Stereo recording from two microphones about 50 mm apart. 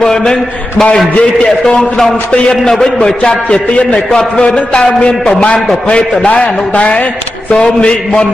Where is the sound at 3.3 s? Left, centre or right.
Left.